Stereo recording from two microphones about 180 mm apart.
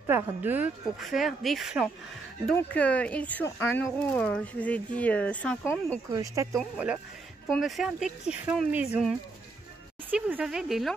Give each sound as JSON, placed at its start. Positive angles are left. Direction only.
{"t": 0.0, "sound": "speech", "side_deg": -10}
{"t": 2.5, "sound": "speech", "side_deg": 5}
{"t": 6.1, "sound": "speech", "side_deg": -15}
{"t": 7.4, "sound": "speech", "side_deg": 0}
{"t": 10.1, "sound": "speech", "side_deg": -5}